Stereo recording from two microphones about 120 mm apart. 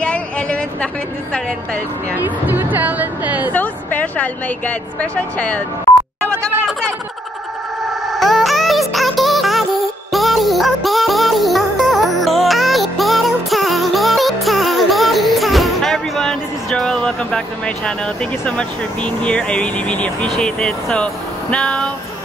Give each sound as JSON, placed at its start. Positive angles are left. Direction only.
{"t": 0.0, "sound": "a sound", "side_deg": 10}
{"t": 2.1, "sound": "speech", "side_deg": -15}
{"t": 3.5, "sound": "a woman's voice", "side_deg": 15}
{"t": 8.1, "sound": "music", "side_deg": 0}